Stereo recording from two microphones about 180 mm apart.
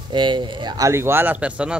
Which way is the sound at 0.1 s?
25° right (ahead or behind).